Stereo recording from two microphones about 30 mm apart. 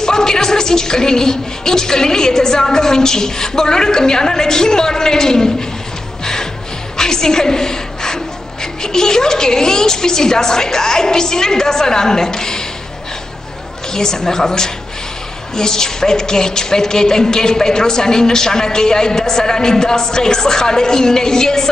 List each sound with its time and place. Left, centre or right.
0.0 s speech: centre
6.2 s music: centre
7.0 s a sound: left
8.8 s speech: left
13.9 s speech: centre